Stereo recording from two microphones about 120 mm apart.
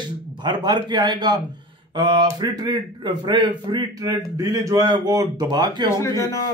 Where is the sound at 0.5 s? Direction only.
40° right (ahead or behind).